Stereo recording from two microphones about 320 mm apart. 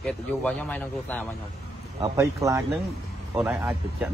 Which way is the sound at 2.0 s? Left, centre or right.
Centre.